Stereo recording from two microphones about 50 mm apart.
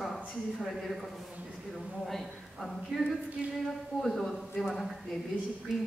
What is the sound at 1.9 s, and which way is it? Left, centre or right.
A man's voice, centre.